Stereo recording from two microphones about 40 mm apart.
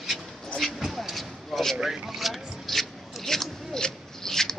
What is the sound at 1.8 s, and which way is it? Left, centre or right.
Speech, centre.